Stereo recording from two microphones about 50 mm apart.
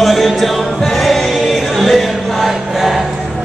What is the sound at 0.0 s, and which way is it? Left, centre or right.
Music, centre.